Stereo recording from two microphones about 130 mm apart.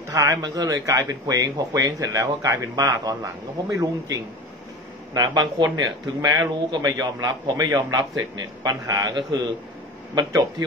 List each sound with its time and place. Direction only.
0.1 s a man's voice: 25° right (ahead or behind)